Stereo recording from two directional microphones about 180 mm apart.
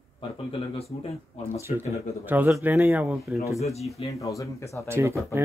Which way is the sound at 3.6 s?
35° left (ahead or behind).